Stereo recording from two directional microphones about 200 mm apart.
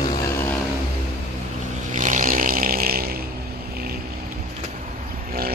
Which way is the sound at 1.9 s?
40° right (ahead or behind).